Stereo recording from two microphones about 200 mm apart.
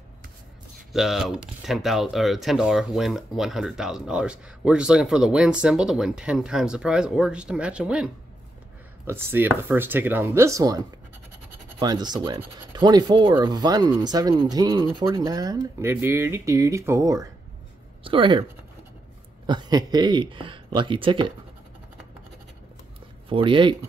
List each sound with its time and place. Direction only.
0.9 s speech: centre (ahead or behind)
11.8 s speech: 20° right (ahead or behind)
19.4 s speech: 20° right (ahead or behind)
23.2 s speech: 25° right (ahead or behind)